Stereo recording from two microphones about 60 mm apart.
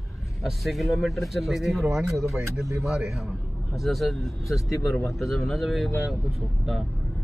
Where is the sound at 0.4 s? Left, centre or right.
Centre.